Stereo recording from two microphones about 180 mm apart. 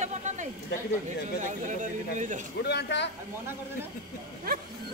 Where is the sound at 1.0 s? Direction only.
45° right (ahead or behind).